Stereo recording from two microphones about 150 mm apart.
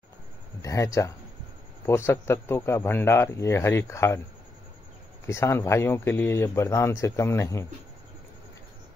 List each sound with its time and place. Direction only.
0.6 s a man's voice: 20° left (ahead or behind)
5.2 s speech: 20° left (ahead or behind)